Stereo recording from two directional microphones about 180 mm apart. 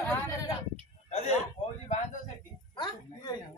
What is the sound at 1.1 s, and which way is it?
Speech, 40° left (ahead or behind).